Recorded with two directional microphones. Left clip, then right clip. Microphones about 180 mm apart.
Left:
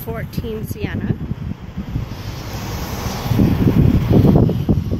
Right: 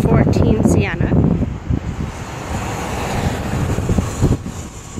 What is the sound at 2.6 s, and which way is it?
Vehicle, 45° right (ahead or behind).